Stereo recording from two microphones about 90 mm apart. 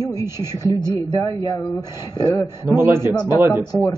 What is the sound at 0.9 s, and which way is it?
Speech, 50° left (ahead or behind).